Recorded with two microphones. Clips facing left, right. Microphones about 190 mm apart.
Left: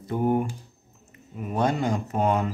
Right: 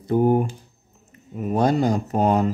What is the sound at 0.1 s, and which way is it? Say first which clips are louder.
A man's voice: right 5 dB; 35° right (ahead or behind).